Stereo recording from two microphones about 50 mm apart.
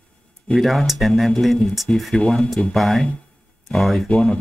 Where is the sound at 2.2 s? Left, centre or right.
Left.